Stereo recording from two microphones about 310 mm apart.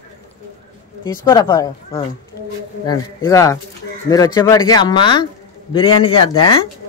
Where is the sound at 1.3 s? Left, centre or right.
Centre.